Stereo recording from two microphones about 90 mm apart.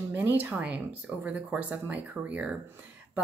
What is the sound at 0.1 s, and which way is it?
A woman's voice, 20° right (ahead or behind).